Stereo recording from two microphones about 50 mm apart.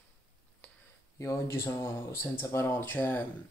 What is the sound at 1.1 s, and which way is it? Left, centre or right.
Speech, left.